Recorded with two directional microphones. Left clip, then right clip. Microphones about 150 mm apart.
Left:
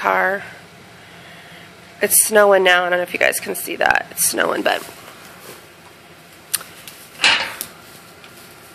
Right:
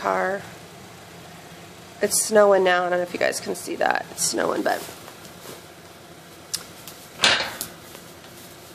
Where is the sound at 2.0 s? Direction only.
15° left (ahead or behind).